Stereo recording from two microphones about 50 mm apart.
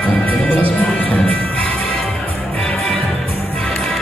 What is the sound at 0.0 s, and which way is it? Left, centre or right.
Music, left.